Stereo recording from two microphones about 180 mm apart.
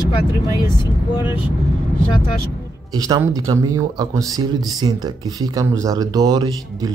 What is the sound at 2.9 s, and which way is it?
Speech, 20° right (ahead or behind).